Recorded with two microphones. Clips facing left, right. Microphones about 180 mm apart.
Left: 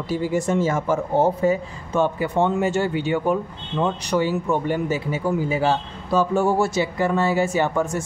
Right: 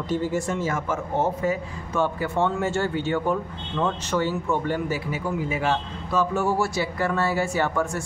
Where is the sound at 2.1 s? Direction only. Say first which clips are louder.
Left 3 dB; 20° left (ahead or behind).